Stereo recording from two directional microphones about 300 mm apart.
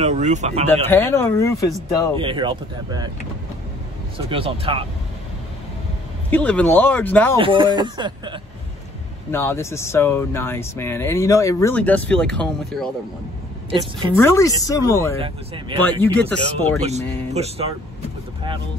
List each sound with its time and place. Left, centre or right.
0.0 s speech: right
0.8 s speech: centre
2.1 s speech: centre
4.3 s speech: centre
6.3 s speech: centre
7.3 s speech: centre
9.3 s speech: centre
14.1 s speech: centre
15.1 s speech: centre
16.0 s speech: centre
17.3 s speech: right